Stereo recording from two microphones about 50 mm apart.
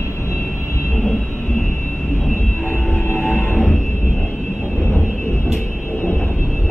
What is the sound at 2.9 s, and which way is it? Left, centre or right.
Music, left.